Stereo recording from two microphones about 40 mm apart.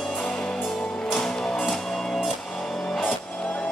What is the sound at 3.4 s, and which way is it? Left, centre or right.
Music, left.